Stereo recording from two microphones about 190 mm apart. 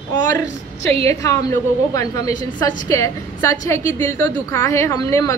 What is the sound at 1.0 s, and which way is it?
A woman's voice, 15° left (ahead or behind).